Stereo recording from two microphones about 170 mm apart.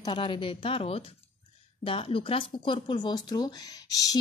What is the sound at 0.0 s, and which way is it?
Speech, 30° left (ahead or behind).